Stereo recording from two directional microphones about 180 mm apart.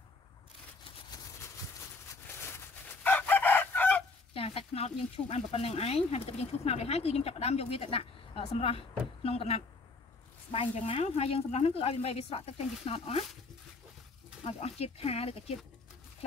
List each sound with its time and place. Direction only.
2.5 s chicken: 10° left (ahead or behind)
4.3 s speech: 35° left (ahead or behind)
14.4 s speech: 35° left (ahead or behind)